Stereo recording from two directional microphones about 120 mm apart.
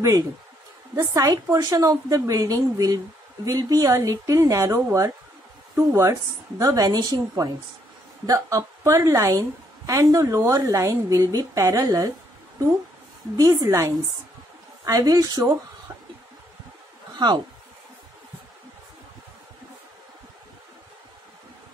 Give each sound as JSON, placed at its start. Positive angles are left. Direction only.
{"t": 0.9, "sound": "a woman's voice", "side_deg": -30}
{"t": 13.4, "sound": "a woman's voice", "side_deg": -30}
{"t": 17.1, "sound": "speech", "side_deg": -35}